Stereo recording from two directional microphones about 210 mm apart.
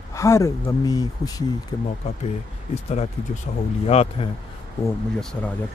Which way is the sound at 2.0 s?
30° left (ahead or behind).